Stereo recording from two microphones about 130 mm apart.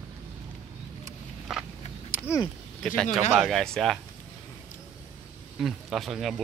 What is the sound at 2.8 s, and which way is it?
A man's voice, 5° left (ahead or behind).